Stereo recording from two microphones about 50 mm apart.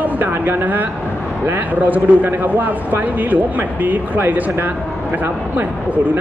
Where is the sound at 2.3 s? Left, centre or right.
Right.